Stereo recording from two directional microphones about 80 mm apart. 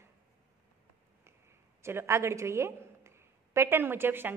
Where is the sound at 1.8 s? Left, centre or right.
Right.